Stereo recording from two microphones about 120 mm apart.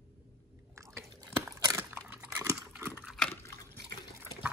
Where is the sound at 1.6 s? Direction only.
25° right (ahead or behind).